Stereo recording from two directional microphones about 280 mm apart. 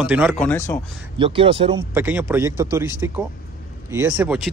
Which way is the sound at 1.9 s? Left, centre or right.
Centre.